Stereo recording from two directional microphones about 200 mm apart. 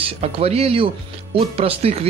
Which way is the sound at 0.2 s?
30° right (ahead or behind).